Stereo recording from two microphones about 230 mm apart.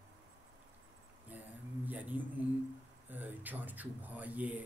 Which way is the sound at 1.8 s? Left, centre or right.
Centre.